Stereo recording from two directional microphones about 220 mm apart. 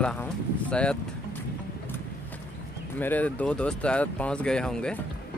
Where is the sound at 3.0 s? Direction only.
5° left (ahead or behind).